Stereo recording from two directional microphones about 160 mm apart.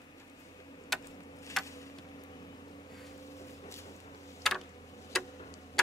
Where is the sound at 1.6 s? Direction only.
20° left (ahead or behind).